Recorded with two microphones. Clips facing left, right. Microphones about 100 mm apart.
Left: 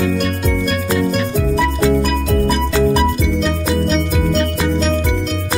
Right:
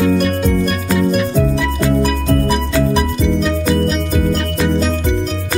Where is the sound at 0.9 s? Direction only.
Centre (ahead or behind).